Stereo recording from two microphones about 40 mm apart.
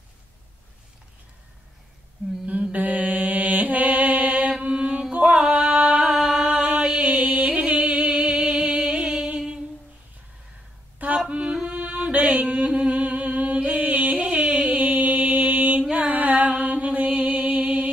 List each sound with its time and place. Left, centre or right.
2.4 s mantra: right
4.6 s mantra: right
5.4 s singing: right
6.1 s a sound: centre
7.0 s music: right
11.1 s yodeling: right
11.6 s music: right
15.8 s mantra: right